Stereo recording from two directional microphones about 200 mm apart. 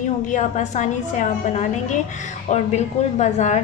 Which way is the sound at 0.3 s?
35° left (ahead or behind).